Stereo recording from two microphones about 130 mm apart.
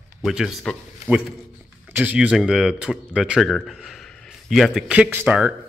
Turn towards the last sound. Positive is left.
turn(degrees=-15)  # may be behind; listen again after turning